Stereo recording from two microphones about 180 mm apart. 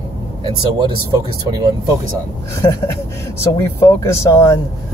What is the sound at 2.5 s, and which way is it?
Speech, 15° left (ahead or behind).